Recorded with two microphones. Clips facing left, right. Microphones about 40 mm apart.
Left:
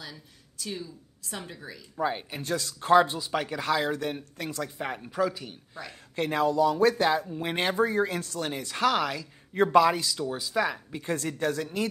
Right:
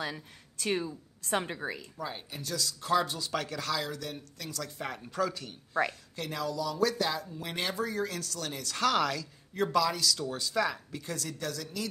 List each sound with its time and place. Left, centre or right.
0.0 s a woman's voice: right
2.0 s speech: left
3.2 s speech: centre
4.6 s speech: centre
6.1 s speech: left; by 9.3 s centre
9.5 s speech: left
10.0 s speech: centre; by 11.9 s left